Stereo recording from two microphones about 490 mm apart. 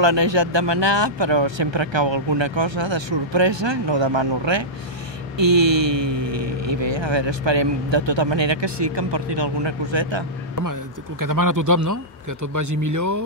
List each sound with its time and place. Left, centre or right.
0.0 s speech: right
10.6 s a man's voice: right